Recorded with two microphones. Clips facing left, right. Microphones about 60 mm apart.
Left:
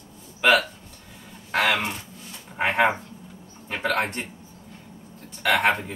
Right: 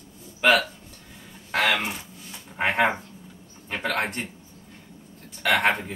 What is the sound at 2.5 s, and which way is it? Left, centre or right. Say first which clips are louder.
Speech: left 1 dB; centre.